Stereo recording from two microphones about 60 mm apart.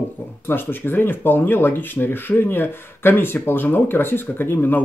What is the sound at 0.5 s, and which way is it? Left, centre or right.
Speech, left.